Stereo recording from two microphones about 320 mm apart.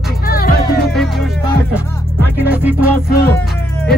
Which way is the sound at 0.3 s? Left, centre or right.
Left.